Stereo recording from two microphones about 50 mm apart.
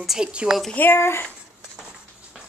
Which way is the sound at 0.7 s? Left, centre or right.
Left.